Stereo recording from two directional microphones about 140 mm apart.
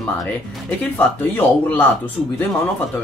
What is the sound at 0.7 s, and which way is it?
A man's voice, 10° left (ahead or behind).